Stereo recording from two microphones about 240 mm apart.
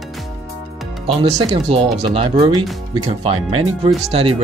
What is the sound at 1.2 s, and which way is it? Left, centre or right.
Speech, right.